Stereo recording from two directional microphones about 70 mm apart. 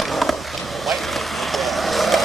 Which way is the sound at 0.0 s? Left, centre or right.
Centre.